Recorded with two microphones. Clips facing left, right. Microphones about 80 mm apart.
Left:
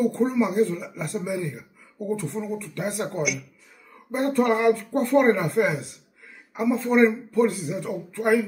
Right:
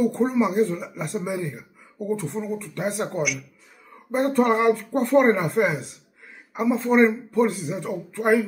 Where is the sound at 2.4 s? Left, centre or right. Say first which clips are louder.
Right 1 dB; centre.